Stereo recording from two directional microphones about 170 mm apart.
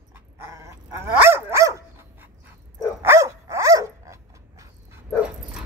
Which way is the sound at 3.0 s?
15° right (ahead or behind).